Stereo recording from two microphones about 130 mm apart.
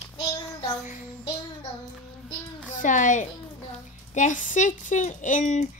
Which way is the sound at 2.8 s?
75° left (ahead or behind).